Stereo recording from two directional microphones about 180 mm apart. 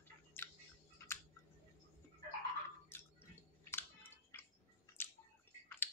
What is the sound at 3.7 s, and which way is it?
Chewing, 10° left (ahead or behind).